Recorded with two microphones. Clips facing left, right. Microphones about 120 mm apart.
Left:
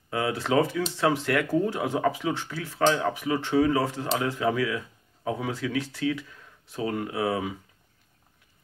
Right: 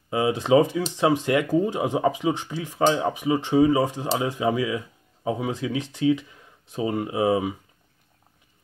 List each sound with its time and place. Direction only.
0.1 s speech: 20° right (ahead or behind)